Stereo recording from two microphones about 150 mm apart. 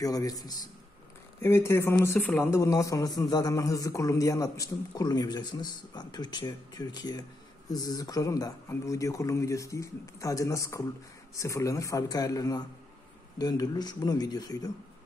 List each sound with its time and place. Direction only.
0.0 s a man's voice: 25° left (ahead or behind)